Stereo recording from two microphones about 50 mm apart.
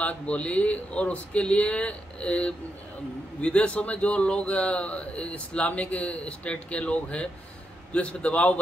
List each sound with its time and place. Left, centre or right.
0.0 s a man's voice: left